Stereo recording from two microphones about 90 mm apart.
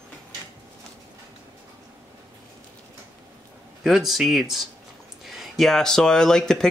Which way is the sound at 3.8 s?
Centre (ahead or behind).